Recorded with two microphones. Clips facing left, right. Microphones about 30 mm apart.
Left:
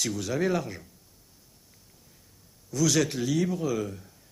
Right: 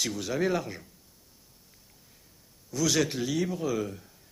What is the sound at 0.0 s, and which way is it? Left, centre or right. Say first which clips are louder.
Speech: left 1 dB; centre.